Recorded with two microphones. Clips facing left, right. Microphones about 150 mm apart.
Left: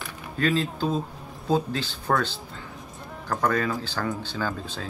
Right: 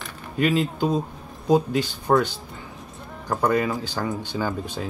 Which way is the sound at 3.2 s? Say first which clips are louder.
Right 3 dB; 15° right (ahead or behind).